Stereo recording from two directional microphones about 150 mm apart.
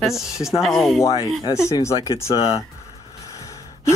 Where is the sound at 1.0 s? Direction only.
25° left (ahead or behind).